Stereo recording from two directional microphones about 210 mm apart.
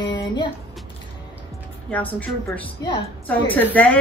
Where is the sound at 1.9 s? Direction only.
5° left (ahead or behind).